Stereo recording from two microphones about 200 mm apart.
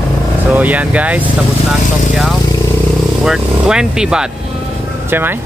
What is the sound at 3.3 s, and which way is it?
Speech, 5° right (ahead or behind).